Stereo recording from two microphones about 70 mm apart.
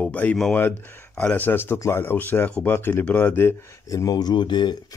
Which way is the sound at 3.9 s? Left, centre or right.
Left.